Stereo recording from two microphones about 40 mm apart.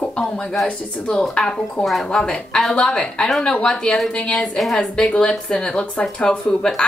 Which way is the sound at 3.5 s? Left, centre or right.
Left.